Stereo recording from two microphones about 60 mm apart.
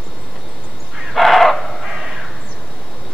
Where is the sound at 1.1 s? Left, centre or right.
Centre.